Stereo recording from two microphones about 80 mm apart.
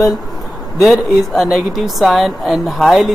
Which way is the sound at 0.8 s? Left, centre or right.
Centre.